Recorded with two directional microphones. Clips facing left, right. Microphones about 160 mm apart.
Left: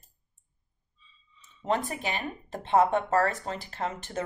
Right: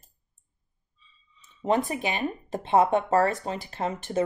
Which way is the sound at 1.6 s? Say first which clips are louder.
Right 4 dB; 15° right (ahead or behind).